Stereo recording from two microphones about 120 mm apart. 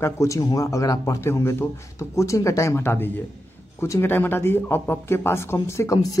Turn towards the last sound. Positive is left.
turn(degrees=25)  # may be behind; listen again after turning